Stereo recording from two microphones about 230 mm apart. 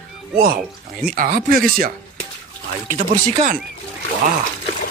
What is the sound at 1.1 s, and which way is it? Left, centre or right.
Speech, right.